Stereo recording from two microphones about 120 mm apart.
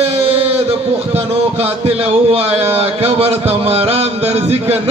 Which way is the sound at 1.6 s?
60° right (ahead or behind).